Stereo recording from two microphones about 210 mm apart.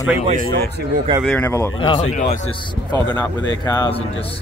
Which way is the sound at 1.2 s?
10° left (ahead or behind).